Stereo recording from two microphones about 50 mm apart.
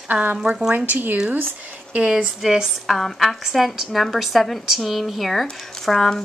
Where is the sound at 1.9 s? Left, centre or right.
Centre.